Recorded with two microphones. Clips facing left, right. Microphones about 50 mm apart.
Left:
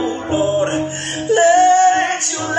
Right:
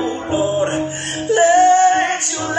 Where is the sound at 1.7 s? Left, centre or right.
Right.